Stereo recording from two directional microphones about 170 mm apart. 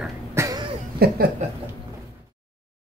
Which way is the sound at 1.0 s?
65° right (ahead or behind).